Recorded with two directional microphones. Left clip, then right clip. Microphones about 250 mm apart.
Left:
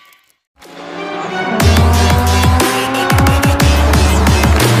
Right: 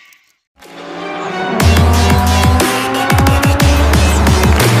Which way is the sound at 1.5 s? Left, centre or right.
Centre.